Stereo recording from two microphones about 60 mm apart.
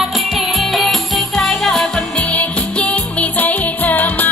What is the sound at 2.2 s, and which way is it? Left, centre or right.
Music, left.